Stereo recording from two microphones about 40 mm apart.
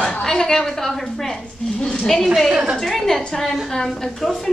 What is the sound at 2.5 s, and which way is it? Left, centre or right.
Speech, right.